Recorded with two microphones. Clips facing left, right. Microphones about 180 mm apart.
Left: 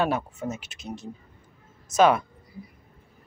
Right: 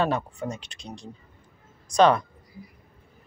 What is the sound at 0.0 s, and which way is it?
Speech, 5° left (ahead or behind).